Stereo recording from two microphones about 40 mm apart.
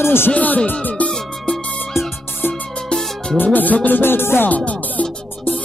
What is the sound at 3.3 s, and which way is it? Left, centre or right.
Music, left.